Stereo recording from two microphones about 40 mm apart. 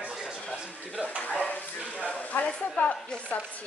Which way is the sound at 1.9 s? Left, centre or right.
Left.